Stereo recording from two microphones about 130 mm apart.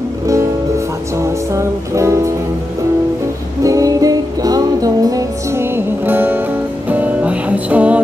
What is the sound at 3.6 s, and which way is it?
Music, 25° right (ahead or behind).